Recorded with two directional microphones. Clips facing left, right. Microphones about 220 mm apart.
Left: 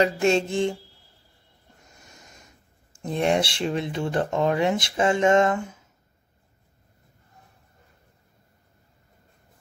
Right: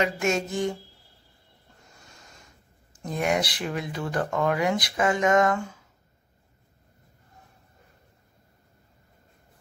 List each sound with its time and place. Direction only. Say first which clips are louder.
0.0 s speech: left 5 dB; 30° left (ahead or behind)
3.0 s speech: left 3 dB; 30° left (ahead or behind)